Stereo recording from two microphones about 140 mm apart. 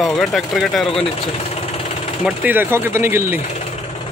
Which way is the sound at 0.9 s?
45° left (ahead or behind).